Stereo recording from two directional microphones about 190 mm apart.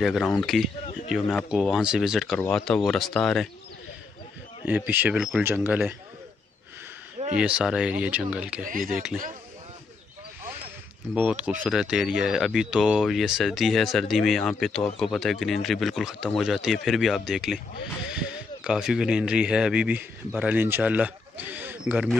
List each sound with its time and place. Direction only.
0.0 s speech: centre (ahead or behind)
4.6 s a man's voice: 10° right (ahead or behind)
7.3 s speech: 5° right (ahead or behind)
8.6 s speech: 45° right (ahead or behind)
8.9 s speech: 5° right (ahead or behind)
11.1 s a man's voice: 5° right (ahead or behind)